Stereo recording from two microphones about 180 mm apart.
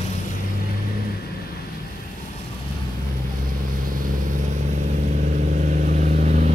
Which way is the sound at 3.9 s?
50° right (ahead or behind).